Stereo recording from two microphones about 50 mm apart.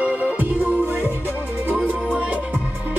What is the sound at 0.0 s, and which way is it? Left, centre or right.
Music, right.